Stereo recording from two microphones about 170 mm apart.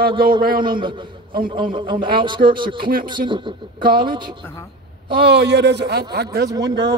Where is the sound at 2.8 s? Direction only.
55° right (ahead or behind).